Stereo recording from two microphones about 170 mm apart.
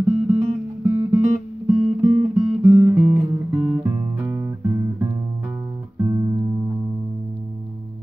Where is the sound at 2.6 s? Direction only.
15° right (ahead or behind).